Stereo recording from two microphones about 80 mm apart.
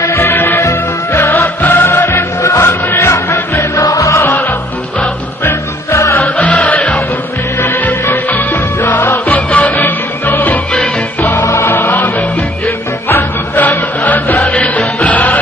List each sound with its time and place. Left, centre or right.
0.0 s music: left
2.4 s music: left
5.9 s music: left
6.1 s music: centre